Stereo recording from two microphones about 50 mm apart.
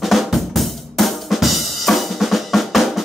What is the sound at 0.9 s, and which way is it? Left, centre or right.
Drum, centre.